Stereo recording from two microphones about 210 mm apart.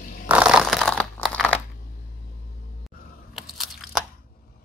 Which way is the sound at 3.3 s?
Centre (ahead or behind).